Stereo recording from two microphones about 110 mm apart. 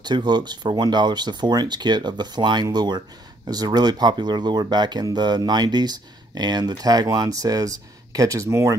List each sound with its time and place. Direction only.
0.0 s speech: 40° right (ahead or behind)